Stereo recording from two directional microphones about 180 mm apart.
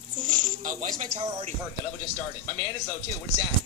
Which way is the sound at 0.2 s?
45° right (ahead or behind).